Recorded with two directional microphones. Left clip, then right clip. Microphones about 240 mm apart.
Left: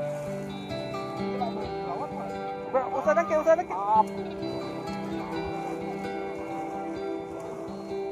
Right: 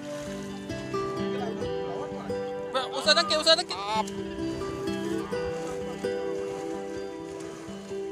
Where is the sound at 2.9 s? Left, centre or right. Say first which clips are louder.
Right 2 dB; right.